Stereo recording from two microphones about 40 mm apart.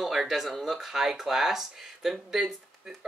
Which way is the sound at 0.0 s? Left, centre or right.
Centre.